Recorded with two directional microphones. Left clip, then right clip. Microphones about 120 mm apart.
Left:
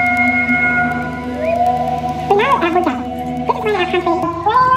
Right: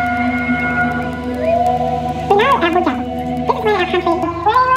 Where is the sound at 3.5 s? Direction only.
Centre (ahead or behind).